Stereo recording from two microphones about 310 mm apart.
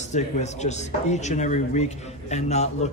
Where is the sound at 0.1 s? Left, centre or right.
Left.